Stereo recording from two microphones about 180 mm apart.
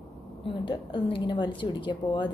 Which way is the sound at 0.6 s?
25° left (ahead or behind).